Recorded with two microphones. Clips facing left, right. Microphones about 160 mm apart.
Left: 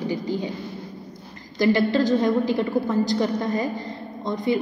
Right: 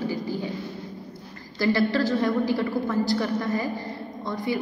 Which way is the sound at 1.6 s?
20° left (ahead or behind).